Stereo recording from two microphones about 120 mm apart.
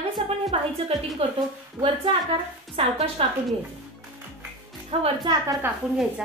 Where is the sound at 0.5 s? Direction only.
55° right (ahead or behind).